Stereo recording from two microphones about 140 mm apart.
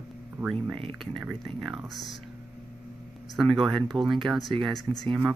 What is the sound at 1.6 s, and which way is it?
Speech, centre (ahead or behind).